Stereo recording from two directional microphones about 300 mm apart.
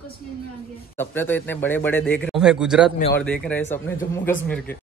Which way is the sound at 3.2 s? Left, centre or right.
Centre.